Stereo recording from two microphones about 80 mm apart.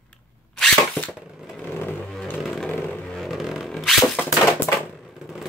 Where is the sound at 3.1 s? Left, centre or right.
Centre.